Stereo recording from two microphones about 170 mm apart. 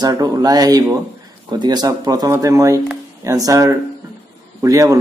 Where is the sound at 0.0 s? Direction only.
20° right (ahead or behind).